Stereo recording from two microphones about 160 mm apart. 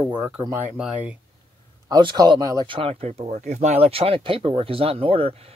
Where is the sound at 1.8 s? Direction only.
25° right (ahead or behind).